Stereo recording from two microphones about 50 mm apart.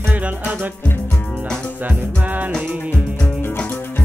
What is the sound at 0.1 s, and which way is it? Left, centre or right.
Music, right.